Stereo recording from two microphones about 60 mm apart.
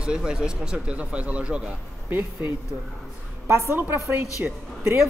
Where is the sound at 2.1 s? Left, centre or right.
Right.